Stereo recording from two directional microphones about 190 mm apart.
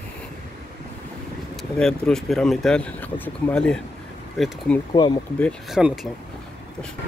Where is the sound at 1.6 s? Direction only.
5° left (ahead or behind).